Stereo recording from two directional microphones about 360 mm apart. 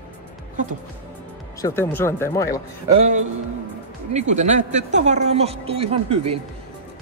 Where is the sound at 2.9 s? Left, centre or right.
Centre.